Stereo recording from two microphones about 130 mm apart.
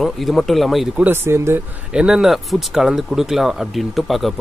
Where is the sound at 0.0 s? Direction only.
Centre (ahead or behind).